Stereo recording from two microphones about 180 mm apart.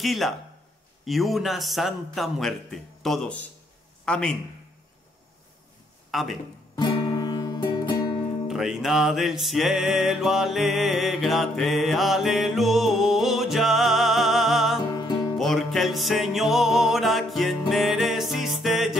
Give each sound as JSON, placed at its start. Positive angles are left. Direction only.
{"t": 0.0, "sound": "a man's voice", "side_deg": 0}
{"t": 6.1, "sound": "a man's voice", "side_deg": 0}
{"t": 6.7, "sound": "music", "side_deg": 25}
{"t": 8.5, "sound": "music", "side_deg": 0}
{"t": 14.9, "sound": "music", "side_deg": 20}
{"t": 15.3, "sound": "music", "side_deg": 0}